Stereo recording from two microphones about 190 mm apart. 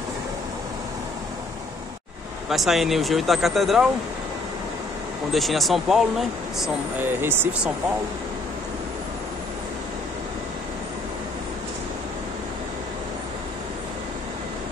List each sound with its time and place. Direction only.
2.5 s speech: centre (ahead or behind)
5.3 s speech: centre (ahead or behind)